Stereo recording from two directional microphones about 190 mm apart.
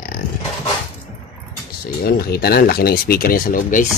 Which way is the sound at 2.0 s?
55° left (ahead or behind).